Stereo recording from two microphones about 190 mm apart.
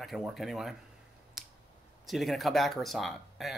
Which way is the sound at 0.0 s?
Centre (ahead or behind).